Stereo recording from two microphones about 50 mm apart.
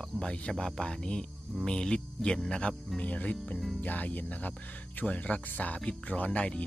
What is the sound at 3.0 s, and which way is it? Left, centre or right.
Speech, left.